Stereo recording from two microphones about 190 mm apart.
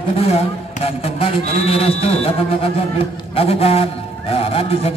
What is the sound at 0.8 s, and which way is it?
A man's voice, 30° left (ahead or behind).